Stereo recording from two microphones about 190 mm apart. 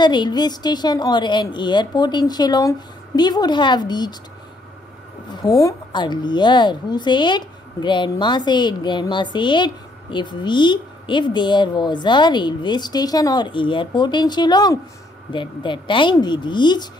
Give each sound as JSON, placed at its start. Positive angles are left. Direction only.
{"t": 0.0, "sound": "a woman's voice", "side_deg": 25}
{"t": 5.3, "sound": "a woman's voice", "side_deg": 20}